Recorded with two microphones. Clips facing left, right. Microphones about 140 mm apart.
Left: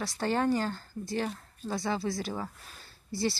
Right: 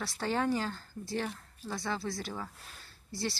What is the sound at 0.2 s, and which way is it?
Speech, centre (ahead or behind).